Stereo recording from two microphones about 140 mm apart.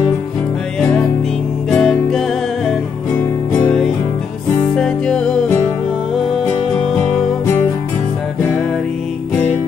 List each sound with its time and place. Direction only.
1.7 s music: 5° left (ahead or behind)
7.4 s music: 15° left (ahead or behind)